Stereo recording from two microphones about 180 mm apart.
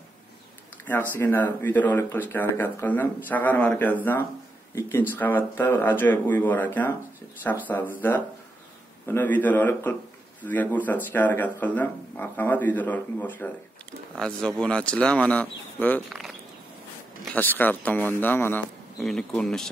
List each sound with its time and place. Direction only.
0.8 s speech: 10° left (ahead or behind)